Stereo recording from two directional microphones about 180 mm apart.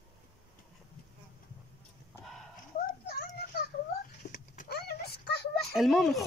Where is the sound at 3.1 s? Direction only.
55° left (ahead or behind).